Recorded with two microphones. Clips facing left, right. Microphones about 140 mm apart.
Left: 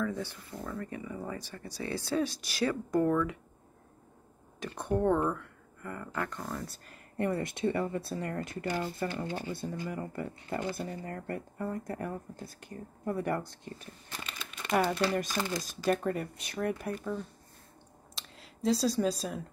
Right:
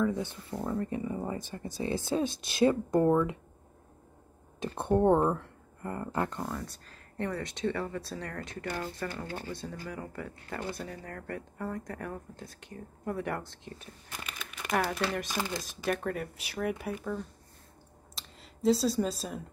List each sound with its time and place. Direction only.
0.0 s speech: 20° right (ahead or behind)
4.6 s speech: 25° right (ahead or behind)
6.5 s speech: 5° left (ahead or behind)
18.1 s clicking: centre (ahead or behind)